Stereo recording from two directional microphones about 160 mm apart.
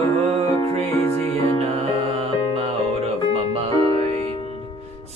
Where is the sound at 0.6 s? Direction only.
20° left (ahead or behind).